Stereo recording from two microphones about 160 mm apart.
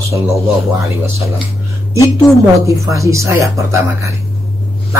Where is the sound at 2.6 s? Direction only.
20° right (ahead or behind).